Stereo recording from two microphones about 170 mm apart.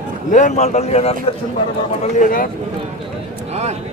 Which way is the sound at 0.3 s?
45° left (ahead or behind).